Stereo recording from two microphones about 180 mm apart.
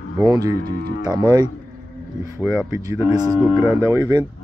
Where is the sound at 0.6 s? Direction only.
55° right (ahead or behind).